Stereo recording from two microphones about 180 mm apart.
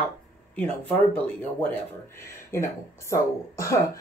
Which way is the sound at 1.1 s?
10° left (ahead or behind).